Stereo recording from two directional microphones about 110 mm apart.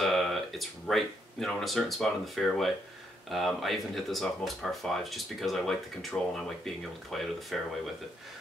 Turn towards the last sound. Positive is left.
turn(degrees=0)  # may be behind; listen again after turning